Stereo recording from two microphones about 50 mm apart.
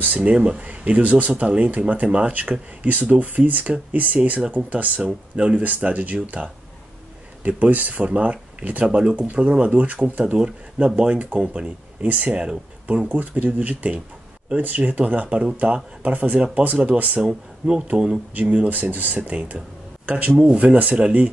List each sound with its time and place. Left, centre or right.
0.2 s speech: right
11.0 s speech: right
17.2 s speech: centre
18.3 s speech: right